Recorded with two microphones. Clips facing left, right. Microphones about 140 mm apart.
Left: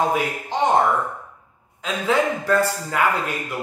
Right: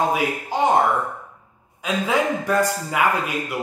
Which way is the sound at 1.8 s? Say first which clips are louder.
Even; 15° right (ahead or behind).